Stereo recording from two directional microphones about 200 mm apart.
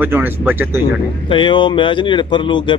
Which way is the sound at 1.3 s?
25° left (ahead or behind).